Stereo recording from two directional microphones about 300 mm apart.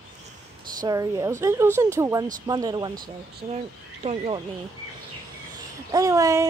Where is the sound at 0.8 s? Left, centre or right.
Centre.